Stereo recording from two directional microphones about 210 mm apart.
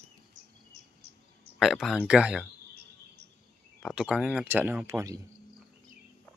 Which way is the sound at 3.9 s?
5° right (ahead or behind).